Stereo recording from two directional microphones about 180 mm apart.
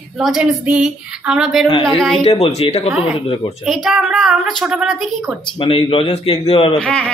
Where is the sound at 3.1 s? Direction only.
30° left (ahead or behind).